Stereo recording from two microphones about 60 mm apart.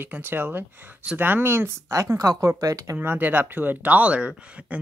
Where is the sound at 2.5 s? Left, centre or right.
Right.